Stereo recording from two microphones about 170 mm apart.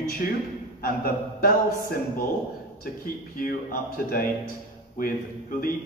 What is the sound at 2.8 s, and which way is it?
Speech, 60° left (ahead or behind).